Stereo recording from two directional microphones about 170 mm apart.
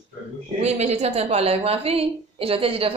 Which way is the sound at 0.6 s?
40° right (ahead or behind).